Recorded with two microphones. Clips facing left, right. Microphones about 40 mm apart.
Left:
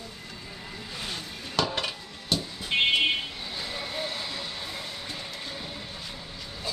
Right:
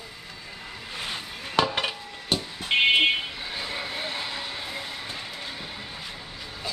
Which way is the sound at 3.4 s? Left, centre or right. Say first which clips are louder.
Right 3 dB; right.